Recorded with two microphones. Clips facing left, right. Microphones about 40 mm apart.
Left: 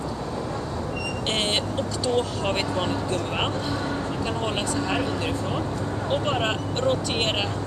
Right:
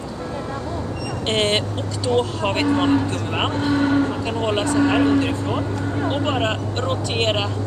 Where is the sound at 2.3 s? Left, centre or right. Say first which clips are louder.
Right 3 dB; centre.